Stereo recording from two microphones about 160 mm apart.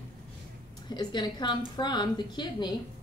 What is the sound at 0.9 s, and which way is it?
A woman's voice, 25° left (ahead or behind).